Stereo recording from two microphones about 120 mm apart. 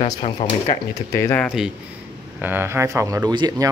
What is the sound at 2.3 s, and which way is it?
Speech, 15° right (ahead or behind).